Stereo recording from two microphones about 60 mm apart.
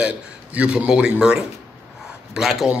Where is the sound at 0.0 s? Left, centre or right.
Right.